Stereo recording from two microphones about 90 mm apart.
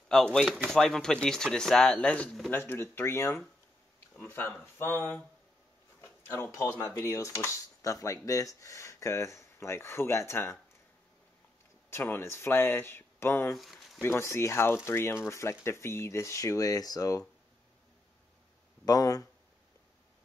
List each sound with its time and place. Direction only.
0.1 s speech: 5° left (ahead or behind)
2.5 s speech: 25° left (ahead or behind)
4.7 s speech: 25° left (ahead or behind)
5.9 s a sound: 25° left (ahead or behind)
6.6 s speech: 25° left (ahead or behind)
11.9 s speech: 25° left (ahead or behind)
13.5 s speech: centre (ahead or behind)
14.0 s speech: 30° left (ahead or behind); by 17.2 s 45° left (ahead or behind)
18.9 s speech: 45° left (ahead or behind)